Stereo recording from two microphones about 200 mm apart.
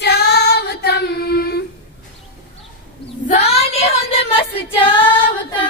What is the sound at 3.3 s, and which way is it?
Female singing, 30° left (ahead or behind).